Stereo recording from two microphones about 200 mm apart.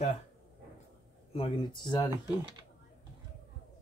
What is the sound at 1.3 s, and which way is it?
Speech, 25° left (ahead or behind).